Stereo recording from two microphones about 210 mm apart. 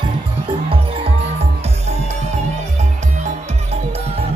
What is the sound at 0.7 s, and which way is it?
Music, 25° right (ahead or behind).